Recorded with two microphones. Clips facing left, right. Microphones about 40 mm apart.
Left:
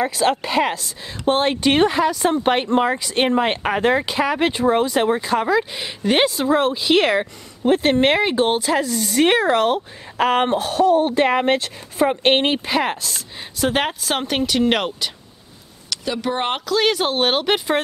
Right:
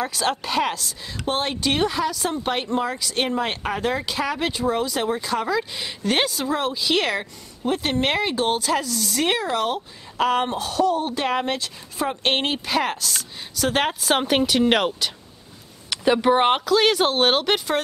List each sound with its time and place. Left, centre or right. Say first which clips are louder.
0.0 s speech: left 5 dB; centre
1.2 s speech: left 6 dB; left
9.3 s speech: left 5 dB; left
12.2 s speech: left 6 dB; left; by 15.0 s centre
15.9 s speech: right 5 dB; right
16.3 s speech: right 3 dB; centre